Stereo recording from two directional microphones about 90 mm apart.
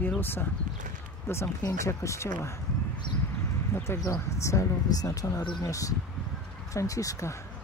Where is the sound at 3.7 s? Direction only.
30° left (ahead or behind).